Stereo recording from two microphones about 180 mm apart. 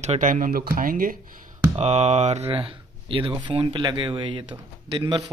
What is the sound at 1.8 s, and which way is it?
Speech, 40° right (ahead or behind).